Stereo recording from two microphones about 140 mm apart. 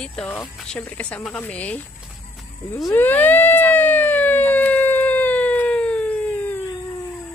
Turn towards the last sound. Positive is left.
turn(degrees=10)  # may be behind; listen again after turning